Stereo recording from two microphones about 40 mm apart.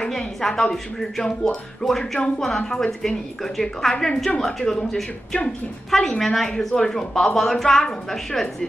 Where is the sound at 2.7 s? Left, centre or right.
Centre.